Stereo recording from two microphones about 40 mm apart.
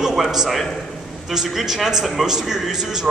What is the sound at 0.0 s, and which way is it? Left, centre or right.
A man's voice, centre.